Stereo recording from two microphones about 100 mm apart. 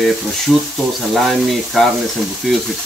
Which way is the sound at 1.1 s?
Centre (ahead or behind).